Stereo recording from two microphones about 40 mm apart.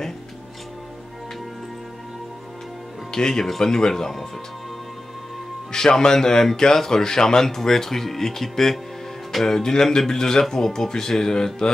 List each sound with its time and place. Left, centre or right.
3.1 s speech: centre
5.7 s speech: centre